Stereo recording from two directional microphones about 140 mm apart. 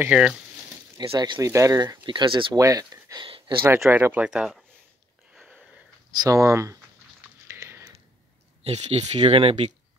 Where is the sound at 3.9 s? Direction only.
15° right (ahead or behind).